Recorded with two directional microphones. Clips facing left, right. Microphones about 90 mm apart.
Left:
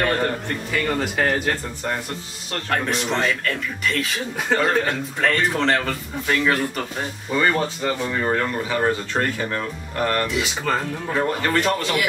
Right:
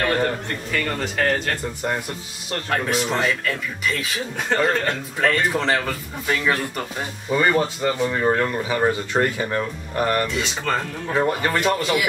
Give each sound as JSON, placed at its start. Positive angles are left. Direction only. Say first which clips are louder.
{"t": 0.0, "sound": "a man's voice", "louder": "even", "side_deg": 0}
{"t": 2.7, "sound": "speech", "louder": "even", "side_deg": -5}
{"t": 10.2, "sound": "speech", "louder": "left 1 dB", "side_deg": 5}
{"t": 11.1, "sound": "speech", "louder": "right 1 dB", "side_deg": -15}